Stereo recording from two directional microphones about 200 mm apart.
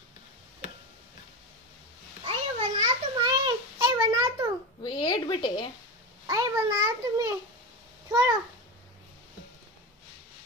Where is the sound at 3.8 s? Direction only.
15° right (ahead or behind).